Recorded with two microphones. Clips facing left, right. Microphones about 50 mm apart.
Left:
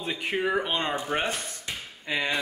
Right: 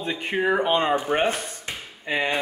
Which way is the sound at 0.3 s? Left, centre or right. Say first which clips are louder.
Right 4 dB; centre.